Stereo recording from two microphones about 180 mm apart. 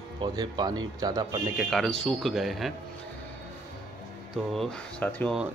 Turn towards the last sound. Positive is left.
turn(degrees=5)  # may be behind; listen again after turning